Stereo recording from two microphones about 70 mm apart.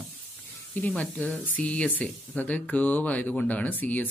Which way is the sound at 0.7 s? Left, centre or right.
Left.